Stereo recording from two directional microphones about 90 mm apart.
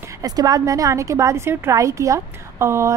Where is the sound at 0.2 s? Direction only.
45° right (ahead or behind).